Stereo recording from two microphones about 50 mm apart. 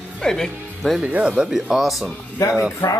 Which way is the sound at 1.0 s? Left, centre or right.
Right.